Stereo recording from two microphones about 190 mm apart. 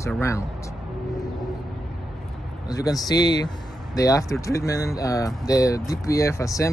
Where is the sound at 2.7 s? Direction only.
20° left (ahead or behind).